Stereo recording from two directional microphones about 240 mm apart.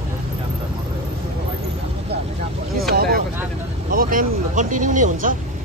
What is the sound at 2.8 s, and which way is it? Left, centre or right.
Vehicle, right.